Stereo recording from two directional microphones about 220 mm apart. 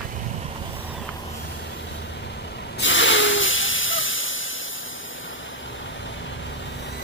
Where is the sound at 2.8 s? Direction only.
60° left (ahead or behind).